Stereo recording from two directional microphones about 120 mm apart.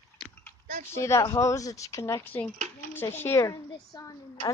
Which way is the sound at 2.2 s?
15° left (ahead or behind).